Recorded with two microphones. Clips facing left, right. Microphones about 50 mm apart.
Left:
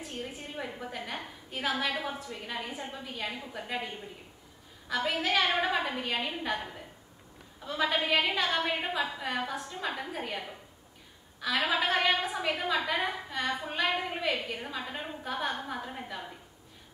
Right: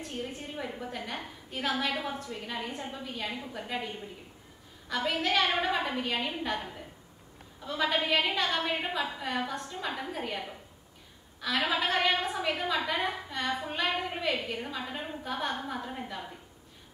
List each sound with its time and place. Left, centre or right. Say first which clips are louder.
0.0 s a woman's voice: right 2 dB; centre